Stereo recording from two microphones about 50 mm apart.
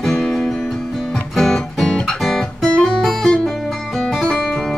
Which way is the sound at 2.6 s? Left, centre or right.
Centre.